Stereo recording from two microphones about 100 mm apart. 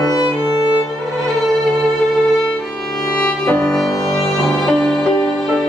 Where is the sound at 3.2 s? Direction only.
15° left (ahead or behind).